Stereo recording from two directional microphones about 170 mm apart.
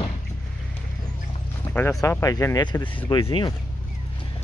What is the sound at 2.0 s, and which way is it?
Speech, 20° left (ahead or behind).